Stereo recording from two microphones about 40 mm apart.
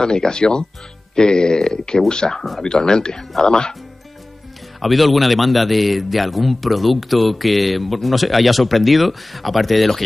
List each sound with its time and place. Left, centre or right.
0.0 s speech: centre
4.8 s a man's voice: centre